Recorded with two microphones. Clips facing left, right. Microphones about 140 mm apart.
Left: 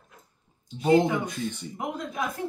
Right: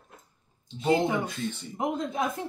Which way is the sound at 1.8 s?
25° right (ahead or behind).